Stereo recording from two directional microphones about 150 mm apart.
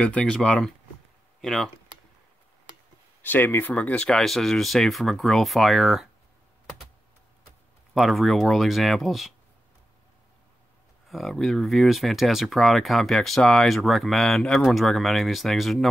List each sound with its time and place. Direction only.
0.0 s speech: 5° left (ahead or behind)
3.2 s speech: 15° left (ahead or behind)
7.9 s speech: centre (ahead or behind)
11.1 s speech: centre (ahead or behind)